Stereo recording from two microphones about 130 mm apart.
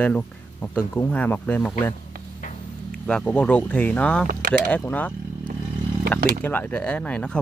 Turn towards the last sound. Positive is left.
turn(degrees=10)  # may be behind; listen again after turning